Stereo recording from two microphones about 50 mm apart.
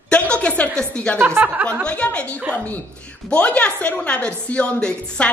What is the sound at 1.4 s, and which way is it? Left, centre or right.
Speech, right.